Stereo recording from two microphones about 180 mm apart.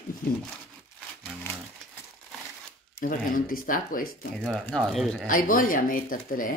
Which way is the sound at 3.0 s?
50° left (ahead or behind).